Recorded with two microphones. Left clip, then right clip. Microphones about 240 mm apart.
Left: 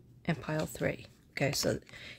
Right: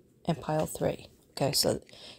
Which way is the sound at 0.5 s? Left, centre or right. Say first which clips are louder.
Right 5 dB; centre.